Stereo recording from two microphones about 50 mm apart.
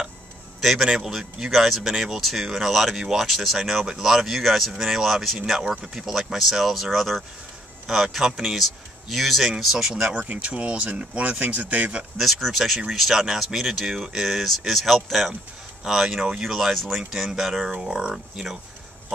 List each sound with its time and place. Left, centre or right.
0.6 s a man's voice: centre
8.3 s speech: centre
8.5 s speech: centre
10.2 s speech: right
12.2 s speech: centre
17.6 s speech: centre